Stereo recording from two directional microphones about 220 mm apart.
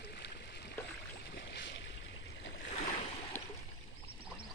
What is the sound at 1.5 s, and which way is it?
Boat, 55° left (ahead or behind).